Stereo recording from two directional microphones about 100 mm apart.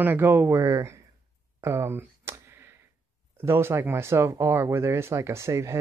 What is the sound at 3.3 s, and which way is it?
Speech, 25° right (ahead or behind).